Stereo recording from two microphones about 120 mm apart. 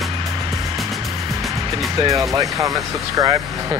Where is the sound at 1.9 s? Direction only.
30° right (ahead or behind).